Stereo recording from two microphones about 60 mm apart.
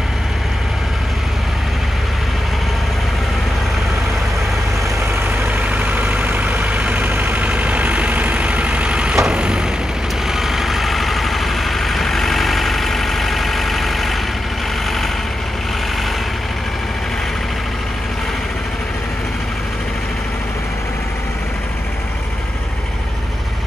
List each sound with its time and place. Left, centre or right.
5.7 s vehicle: right
10.4 s vehicle: centre